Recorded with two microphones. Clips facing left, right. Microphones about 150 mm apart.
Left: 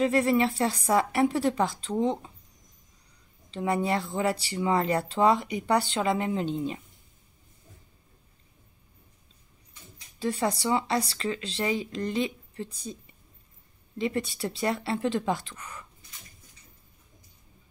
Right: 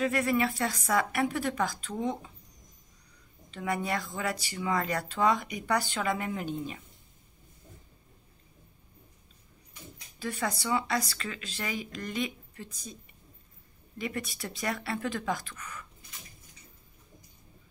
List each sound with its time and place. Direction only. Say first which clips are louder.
0.0 s speech: left 4 dB; 30° left (ahead or behind)
3.4 s speech: left 5 dB; 30° left (ahead or behind)
10.1 s speech: left 6 dB; 30° left (ahead or behind)
13.9 s speech: left 6 dB; 25° left (ahead or behind)